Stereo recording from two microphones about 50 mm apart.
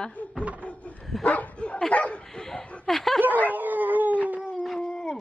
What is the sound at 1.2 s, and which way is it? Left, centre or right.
Bow-wow, left.